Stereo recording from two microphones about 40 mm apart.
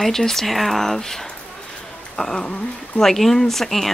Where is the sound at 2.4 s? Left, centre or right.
Left.